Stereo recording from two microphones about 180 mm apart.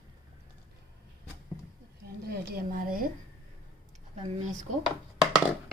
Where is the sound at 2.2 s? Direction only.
55° right (ahead or behind).